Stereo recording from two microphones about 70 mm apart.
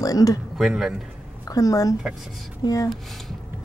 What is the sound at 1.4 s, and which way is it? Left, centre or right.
A woman's voice, left.